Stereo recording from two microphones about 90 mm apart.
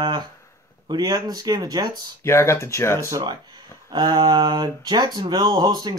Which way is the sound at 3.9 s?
55° right (ahead or behind).